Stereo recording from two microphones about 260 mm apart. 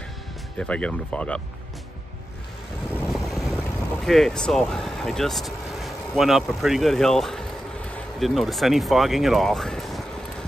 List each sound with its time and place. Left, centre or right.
0.6 s speech: centre
2.9 s boat: centre